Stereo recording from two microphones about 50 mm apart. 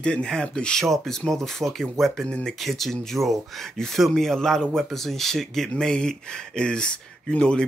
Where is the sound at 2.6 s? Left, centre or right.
Centre.